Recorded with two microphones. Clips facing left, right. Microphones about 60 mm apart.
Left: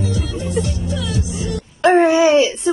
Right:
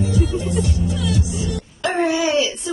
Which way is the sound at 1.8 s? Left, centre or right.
Left.